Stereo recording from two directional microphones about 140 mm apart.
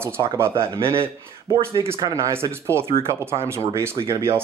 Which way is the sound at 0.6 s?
40° right (ahead or behind).